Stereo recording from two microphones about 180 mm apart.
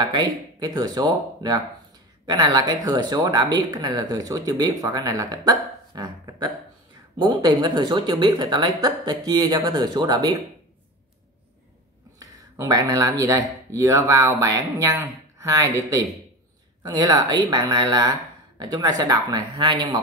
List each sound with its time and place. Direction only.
0.0 s speech: 20° right (ahead or behind)
12.2 s speech: 20° right (ahead or behind)
16.8 s speech: 20° right (ahead or behind)